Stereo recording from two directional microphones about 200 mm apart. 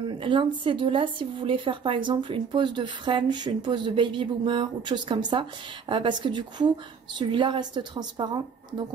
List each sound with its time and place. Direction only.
0.1 s speech: 25° right (ahead or behind)